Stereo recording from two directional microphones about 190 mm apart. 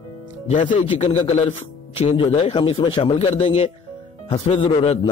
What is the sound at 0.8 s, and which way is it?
A man's voice, 30° left (ahead or behind).